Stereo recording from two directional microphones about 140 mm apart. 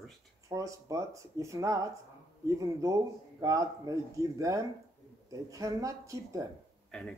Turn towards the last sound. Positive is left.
turn(degrees=5)  # may be behind; listen again after turning